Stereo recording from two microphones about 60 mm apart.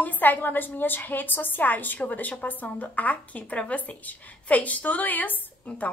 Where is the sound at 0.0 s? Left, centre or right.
Left.